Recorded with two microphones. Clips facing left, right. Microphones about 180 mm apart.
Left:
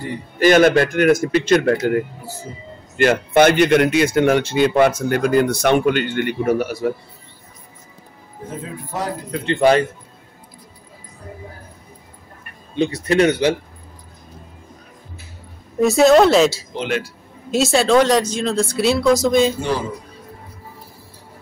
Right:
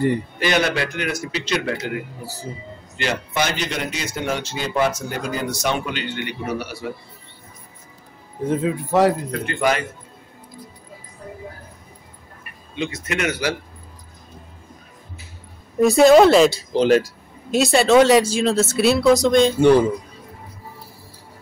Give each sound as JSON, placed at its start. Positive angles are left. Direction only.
{"t": 0.4, "sound": "a man's voice", "side_deg": 50}
{"t": 8.5, "sound": "speech", "side_deg": -80}
{"t": 9.3, "sound": "speech", "side_deg": 30}
{"t": 12.7, "sound": "speech", "side_deg": 35}
{"t": 15.8, "sound": "speech", "side_deg": 0}
{"t": 16.7, "sound": "speech", "side_deg": -35}
{"t": 17.6, "sound": "speech", "side_deg": 0}